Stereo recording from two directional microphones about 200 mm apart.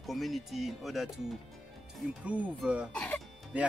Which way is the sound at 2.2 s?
5° right (ahead or behind).